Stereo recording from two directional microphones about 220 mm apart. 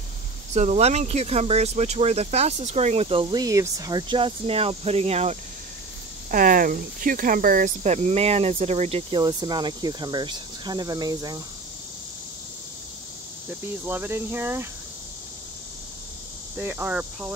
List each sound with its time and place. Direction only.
0.6 s speech: 30° right (ahead or behind)
13.8 s speech: 10° right (ahead or behind)
16.5 s speech: 10° right (ahead or behind)